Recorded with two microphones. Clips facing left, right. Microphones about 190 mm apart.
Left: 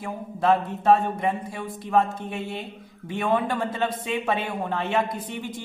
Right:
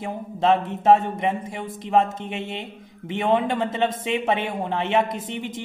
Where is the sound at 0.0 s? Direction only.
20° right (ahead or behind).